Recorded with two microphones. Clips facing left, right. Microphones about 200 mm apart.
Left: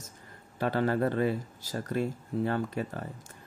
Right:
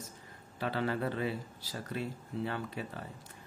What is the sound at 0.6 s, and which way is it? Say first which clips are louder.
A man's voice: left 6 dB; 45° left (ahead or behind).